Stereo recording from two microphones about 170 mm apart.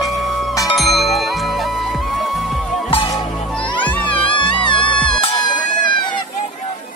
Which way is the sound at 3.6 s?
25° left (ahead or behind).